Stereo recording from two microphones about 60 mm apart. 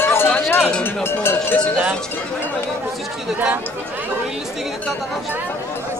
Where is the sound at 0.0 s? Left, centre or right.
Left.